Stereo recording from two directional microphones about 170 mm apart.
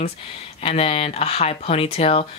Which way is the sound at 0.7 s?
35° left (ahead or behind).